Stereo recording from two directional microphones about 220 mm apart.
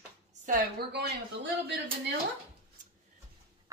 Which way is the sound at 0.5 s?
45° right (ahead or behind).